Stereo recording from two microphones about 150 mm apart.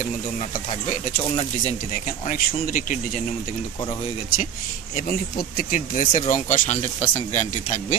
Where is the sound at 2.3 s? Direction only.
65° left (ahead or behind).